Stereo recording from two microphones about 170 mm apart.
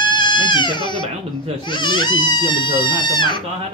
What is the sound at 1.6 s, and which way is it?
Speech, 25° left (ahead or behind).